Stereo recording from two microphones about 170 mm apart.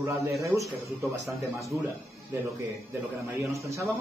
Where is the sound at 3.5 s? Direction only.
15° right (ahead or behind).